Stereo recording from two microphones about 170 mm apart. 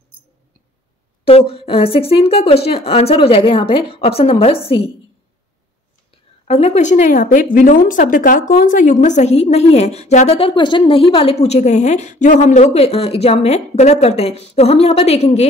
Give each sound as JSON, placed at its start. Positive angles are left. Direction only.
{"t": 1.2, "sound": "a woman's voice", "side_deg": 35}
{"t": 6.4, "sound": "a woman's voice", "side_deg": 40}
{"t": 7.2, "sound": "a woman's voice", "side_deg": 60}